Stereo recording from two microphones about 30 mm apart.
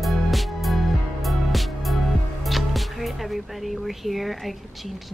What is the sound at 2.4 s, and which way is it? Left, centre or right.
Speech, centre.